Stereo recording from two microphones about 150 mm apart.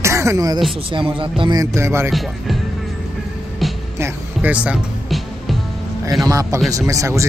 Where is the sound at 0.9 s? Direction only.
35° right (ahead or behind); by 2.1 s 20° right (ahead or behind).